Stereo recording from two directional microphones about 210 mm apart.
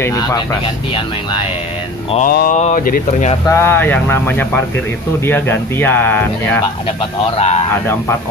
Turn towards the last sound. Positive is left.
turn(degrees=30)  # may be behind; listen again after turning